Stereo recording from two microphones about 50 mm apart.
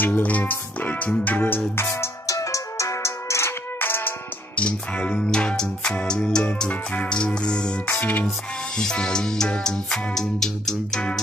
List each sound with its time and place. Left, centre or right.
0.0 s music: left
1.8 s music: left
3.8 s music: left
4.6 s music: left
7.9 s music: left
8.7 s music: centre